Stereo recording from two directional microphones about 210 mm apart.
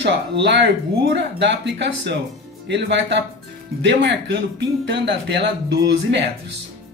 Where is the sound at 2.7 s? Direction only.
55° right (ahead or behind).